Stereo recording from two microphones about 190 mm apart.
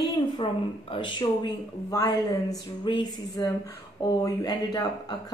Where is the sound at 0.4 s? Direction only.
25° left (ahead or behind).